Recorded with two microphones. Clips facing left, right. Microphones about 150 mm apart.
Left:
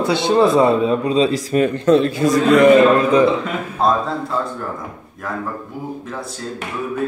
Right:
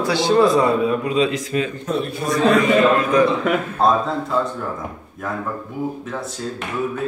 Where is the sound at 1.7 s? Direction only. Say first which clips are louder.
Left 9 dB; 90° left.